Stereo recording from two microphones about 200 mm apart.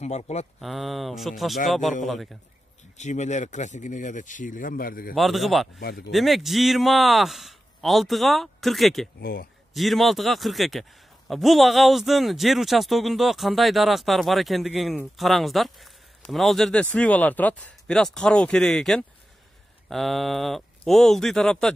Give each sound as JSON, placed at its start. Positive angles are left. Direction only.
{"t": 0.0, "sound": "speech", "side_deg": 35}
{"t": 0.6, "sound": "a man's voice", "side_deg": 0}
{"t": 3.0, "sound": "speech", "side_deg": 35}
{"t": 5.1, "sound": "a man's voice", "side_deg": 0}
{"t": 5.8, "sound": "speech", "side_deg": 50}
{"t": 6.1, "sound": "a man's voice", "side_deg": 0}
{"t": 9.2, "sound": "speech", "side_deg": 45}
{"t": 9.8, "sound": "a man's voice", "side_deg": 0}